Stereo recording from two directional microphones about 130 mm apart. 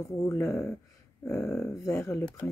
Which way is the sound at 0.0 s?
20° left (ahead or behind).